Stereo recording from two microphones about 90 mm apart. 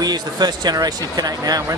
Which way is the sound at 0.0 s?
50° right (ahead or behind).